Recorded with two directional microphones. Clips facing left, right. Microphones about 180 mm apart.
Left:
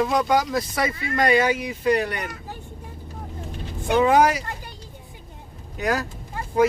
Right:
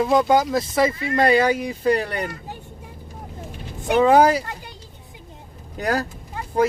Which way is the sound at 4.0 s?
30° right (ahead or behind).